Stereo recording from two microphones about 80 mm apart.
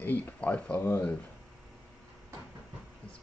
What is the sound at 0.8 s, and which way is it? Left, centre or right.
Speech, left.